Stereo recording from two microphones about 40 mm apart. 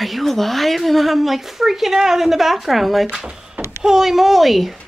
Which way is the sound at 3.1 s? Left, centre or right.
Right.